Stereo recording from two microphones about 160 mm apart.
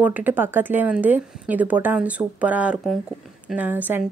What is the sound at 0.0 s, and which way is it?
A woman's voice, 10° right (ahead or behind).